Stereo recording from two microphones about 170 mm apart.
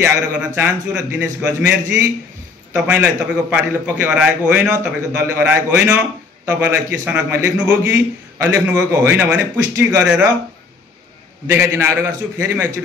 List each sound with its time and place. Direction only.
0.0 s a man's voice: 15° right (ahead or behind)
11.4 s a man's voice: 15° right (ahead or behind)